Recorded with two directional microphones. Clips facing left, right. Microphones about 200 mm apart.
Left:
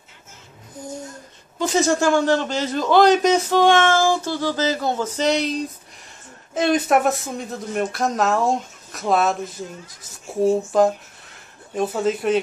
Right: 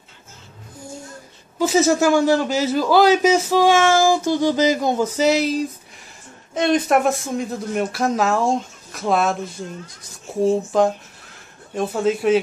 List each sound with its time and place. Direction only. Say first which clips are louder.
1.6 s a man's voice: right 3 dB; 5° right (ahead or behind)